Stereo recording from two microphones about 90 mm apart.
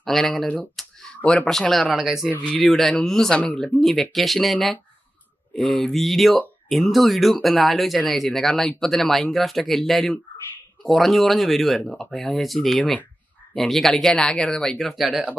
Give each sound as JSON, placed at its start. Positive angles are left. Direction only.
{"t": 0.0, "sound": "speech", "side_deg": 0}
{"t": 2.2, "sound": "speech", "side_deg": 20}
{"t": 2.5, "sound": "speech", "side_deg": 0}